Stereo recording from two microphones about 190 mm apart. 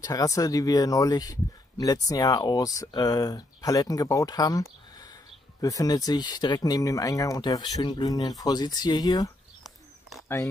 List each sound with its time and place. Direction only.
0.0 s speech: 20° left (ahead or behind)